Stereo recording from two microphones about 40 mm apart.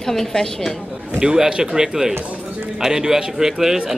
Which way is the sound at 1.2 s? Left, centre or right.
Centre.